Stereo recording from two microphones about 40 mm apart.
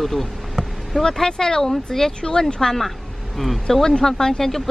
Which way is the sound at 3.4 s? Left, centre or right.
Centre.